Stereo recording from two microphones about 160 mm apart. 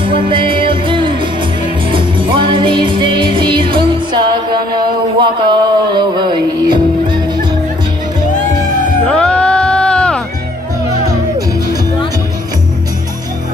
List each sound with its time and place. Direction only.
0.3 s music: 30° right (ahead or behind)
9.0 s music: 5° left (ahead or behind)
11.1 s music: 25° right (ahead or behind)